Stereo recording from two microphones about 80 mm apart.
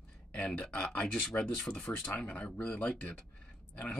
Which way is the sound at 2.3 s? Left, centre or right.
Left.